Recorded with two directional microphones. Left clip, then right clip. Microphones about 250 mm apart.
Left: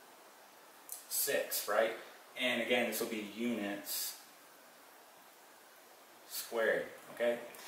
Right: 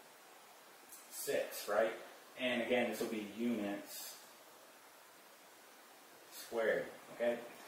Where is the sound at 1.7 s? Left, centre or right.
Centre.